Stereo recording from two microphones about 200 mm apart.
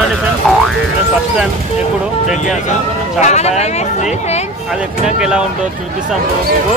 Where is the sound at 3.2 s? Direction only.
35° left (ahead or behind).